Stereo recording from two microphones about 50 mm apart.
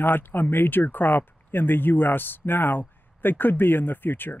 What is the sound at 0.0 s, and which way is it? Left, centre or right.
Speech, left.